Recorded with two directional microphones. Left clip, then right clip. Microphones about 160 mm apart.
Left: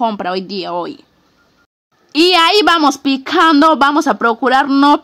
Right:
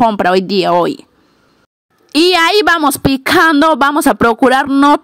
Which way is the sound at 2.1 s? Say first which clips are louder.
Even; 35° right (ahead or behind).